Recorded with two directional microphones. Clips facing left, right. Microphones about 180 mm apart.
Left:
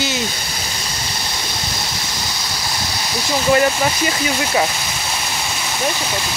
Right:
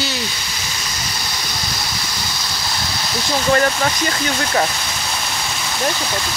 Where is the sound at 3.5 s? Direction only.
15° left (ahead or behind).